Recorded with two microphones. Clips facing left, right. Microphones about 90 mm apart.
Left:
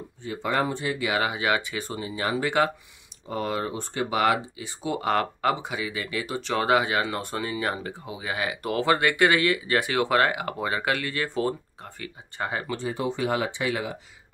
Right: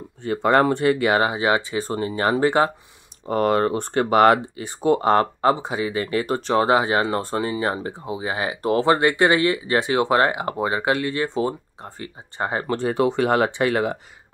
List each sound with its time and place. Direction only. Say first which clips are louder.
0.2 s speech: right 9 dB; 55° right (ahead or behind)
1.2 s speech: right 5 dB; 30° right (ahead or behind)
2.0 s speech: right 7 dB; 45° right (ahead or behind)
3.3 s speech: right 9 dB; 55° right (ahead or behind)
6.5 s speech: right 4 dB; 30° right (ahead or behind)
12.6 s speech: right 8 dB; 55° right (ahead or behind)